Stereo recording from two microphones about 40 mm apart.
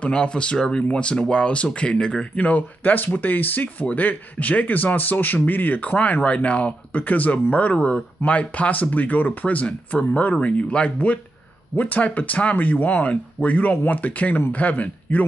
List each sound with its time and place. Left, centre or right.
0.0 s speech: left
2.3 s speech: left
2.8 s speech: left
7.0 s speech: left
10.3 s speech: left
11.7 s speech: left